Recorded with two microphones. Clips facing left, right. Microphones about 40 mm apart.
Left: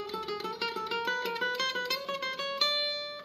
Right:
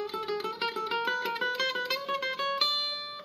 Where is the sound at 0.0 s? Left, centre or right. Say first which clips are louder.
Right 3 dB; centre.